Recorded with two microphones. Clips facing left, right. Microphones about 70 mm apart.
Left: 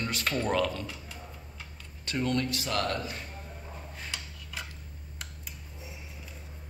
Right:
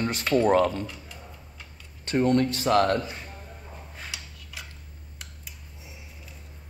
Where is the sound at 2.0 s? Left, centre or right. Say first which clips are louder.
Right 7 dB; right.